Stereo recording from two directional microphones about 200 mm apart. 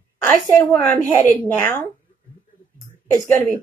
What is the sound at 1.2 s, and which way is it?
Speech, 10° left (ahead or behind).